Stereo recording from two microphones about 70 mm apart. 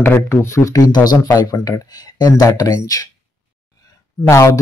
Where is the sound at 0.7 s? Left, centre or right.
Left.